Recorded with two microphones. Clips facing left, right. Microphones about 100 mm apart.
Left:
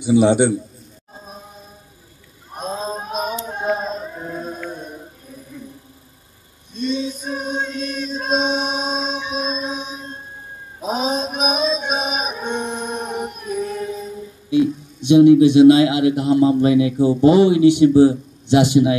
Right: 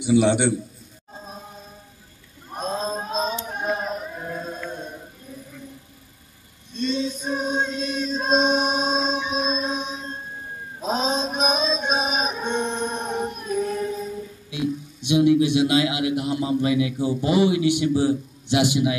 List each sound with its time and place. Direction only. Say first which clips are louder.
0.1 s a man's voice: left 4 dB; 20° left (ahead or behind)
1.1 s music: even; 5° left (ahead or behind)
2.5 s a sound: left 1 dB; 5° left (ahead or behind); by 4.2 s 20° left (ahead or behind)
4.2 s a capella: left 3 dB; 10° left (ahead or behind)
6.7 s chant: left 2 dB; 5° left (ahead or behind)
10.8 s male singing: left 2 dB; 10° left (ahead or behind)
14.6 s a sound: left 6 dB; 15° right (ahead or behind)
15.1 s a sound: left 8 dB; 30° left (ahead or behind)
15.6 s a man's voice: left 10 dB; 30° left (ahead or behind)